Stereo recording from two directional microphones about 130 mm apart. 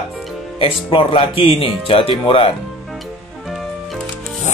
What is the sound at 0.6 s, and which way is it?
Speech, 45° left (ahead or behind).